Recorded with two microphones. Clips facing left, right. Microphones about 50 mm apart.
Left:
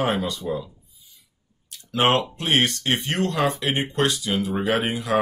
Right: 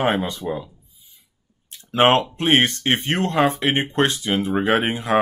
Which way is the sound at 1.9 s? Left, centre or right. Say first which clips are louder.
Right 4 dB; right.